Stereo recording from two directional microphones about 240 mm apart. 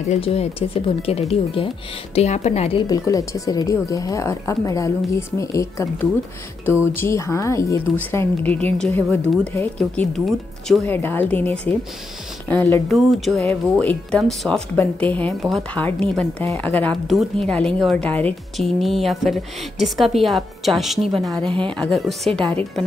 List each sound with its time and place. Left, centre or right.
0.1 s speech: left
2.9 s speech: centre